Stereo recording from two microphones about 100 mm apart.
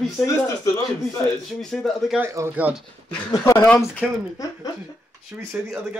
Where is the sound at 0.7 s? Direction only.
35° left (ahead or behind).